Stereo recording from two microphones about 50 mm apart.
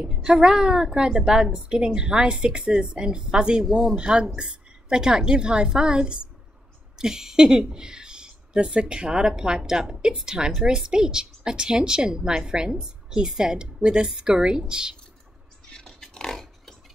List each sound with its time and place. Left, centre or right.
0.1 s speech: centre
3.6 s speech: centre
4.0 s speech: centre
15.7 s a sound: centre